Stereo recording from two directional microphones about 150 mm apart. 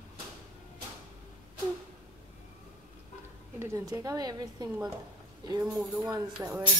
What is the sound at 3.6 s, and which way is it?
A woman's voice, 20° right (ahead or behind).